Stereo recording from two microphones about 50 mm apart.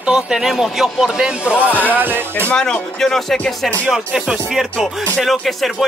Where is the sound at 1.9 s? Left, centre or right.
Right.